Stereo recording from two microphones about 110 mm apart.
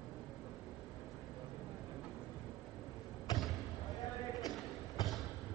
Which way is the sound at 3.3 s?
35° left (ahead or behind).